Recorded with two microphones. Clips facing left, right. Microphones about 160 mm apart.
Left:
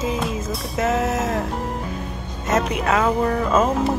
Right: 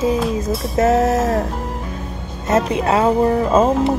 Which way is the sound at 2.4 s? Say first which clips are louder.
Right 4 dB; 30° right (ahead or behind).